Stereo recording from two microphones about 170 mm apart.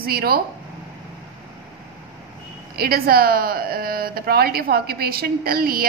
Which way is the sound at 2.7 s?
60° right (ahead or behind).